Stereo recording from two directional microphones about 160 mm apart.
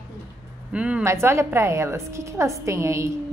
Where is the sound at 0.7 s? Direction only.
5° right (ahead or behind).